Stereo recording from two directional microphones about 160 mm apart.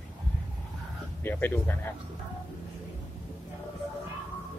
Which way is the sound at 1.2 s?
15° left (ahead or behind).